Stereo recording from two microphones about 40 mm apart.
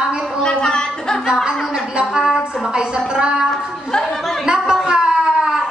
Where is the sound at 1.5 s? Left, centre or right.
Right.